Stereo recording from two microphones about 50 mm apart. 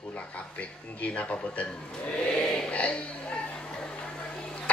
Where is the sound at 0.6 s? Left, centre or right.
Left.